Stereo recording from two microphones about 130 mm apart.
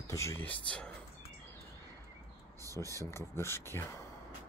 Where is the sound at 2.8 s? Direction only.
20° left (ahead or behind).